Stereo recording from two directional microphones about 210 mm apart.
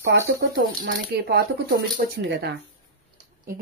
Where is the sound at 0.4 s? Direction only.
55° right (ahead or behind).